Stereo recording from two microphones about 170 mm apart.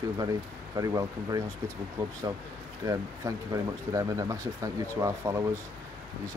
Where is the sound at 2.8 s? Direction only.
20° right (ahead or behind).